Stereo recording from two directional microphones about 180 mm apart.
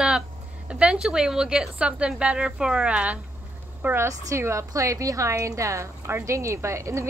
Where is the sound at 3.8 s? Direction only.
10° right (ahead or behind).